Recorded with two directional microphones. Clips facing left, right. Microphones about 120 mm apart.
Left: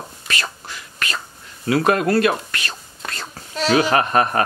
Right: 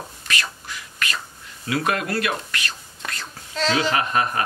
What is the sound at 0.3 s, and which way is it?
Whispering, 35° left (ahead or behind).